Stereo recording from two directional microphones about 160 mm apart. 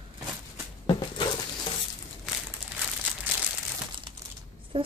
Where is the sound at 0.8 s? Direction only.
30° left (ahead or behind).